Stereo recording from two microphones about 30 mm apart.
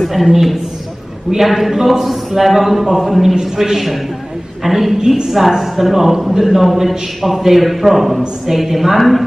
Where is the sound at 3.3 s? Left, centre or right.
Centre.